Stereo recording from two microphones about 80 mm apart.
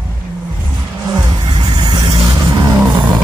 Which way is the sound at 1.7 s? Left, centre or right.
Right.